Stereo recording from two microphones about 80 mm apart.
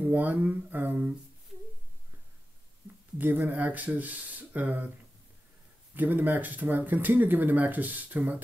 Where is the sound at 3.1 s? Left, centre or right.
Right.